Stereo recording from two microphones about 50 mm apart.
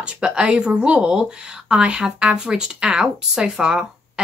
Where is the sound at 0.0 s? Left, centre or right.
Right.